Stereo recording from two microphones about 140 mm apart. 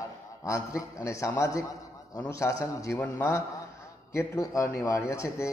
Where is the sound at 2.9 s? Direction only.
10° left (ahead or behind).